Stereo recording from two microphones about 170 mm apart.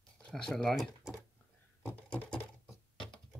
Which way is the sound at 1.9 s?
10° left (ahead or behind).